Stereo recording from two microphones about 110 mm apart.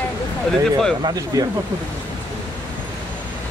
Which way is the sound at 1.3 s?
30° right (ahead or behind).